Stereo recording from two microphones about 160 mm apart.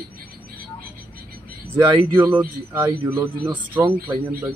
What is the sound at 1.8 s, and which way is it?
A man's voice, 15° right (ahead or behind).